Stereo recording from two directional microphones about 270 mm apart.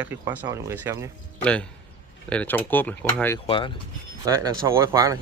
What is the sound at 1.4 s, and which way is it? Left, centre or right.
Speech, centre.